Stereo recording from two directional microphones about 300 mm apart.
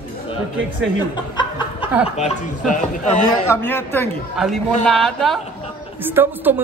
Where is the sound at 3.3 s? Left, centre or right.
Centre.